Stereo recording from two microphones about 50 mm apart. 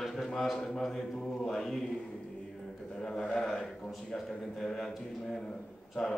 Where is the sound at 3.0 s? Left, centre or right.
Centre.